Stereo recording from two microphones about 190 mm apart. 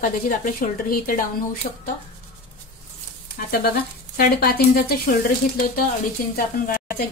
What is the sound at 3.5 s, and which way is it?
A woman's voice, 55° left (ahead or behind).